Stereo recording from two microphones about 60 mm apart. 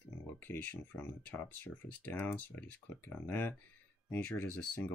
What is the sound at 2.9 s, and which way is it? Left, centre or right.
Speech, left.